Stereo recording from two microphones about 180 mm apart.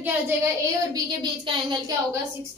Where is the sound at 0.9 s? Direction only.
25° right (ahead or behind).